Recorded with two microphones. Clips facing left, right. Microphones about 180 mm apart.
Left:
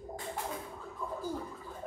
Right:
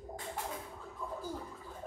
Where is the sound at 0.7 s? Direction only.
90° left.